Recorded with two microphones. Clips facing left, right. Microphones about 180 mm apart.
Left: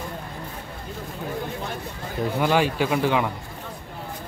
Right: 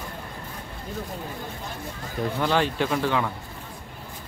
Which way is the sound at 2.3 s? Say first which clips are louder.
Left 3 dB; 10° left (ahead or behind).